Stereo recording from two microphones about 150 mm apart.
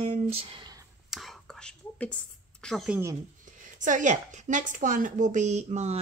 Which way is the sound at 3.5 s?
55° right (ahead or behind).